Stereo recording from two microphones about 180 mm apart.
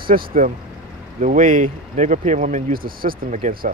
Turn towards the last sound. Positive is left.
turn(degrees=-50)  # may be behind; listen again after turning